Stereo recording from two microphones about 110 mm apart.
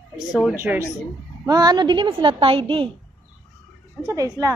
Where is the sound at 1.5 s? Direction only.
35° right (ahead or behind); by 2.6 s 55° right (ahead or behind).